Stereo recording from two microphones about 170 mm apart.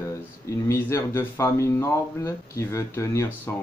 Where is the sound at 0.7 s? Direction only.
15° left (ahead or behind).